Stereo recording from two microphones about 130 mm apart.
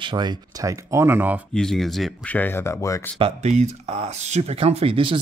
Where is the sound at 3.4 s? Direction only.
60° right (ahead or behind).